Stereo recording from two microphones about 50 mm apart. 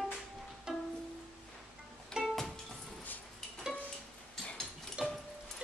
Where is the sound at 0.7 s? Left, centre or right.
Centre.